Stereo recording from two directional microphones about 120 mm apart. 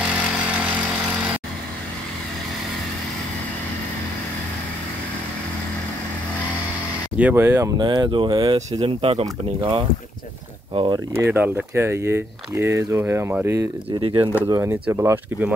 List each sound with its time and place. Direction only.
0.0 s vehicle: 10° right (ahead or behind)
7.2 s speech: 10° right (ahead or behind)
7.4 s speech: 25° right (ahead or behind)
7.7 s speech: 40° right (ahead or behind)
8.8 s speech: 55° right (ahead or behind)
10.7 s speech: 50° right (ahead or behind)
11.1 s speech: 20° right (ahead or behind)
13.8 s speech: 45° right (ahead or behind)
14.5 s speech: 20° right (ahead or behind)